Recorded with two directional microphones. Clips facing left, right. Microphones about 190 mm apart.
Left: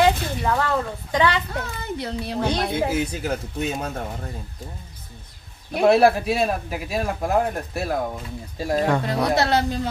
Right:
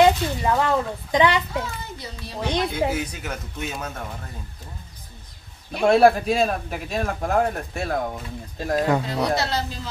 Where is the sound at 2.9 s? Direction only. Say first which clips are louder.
Left 5 dB; 30° left (ahead or behind).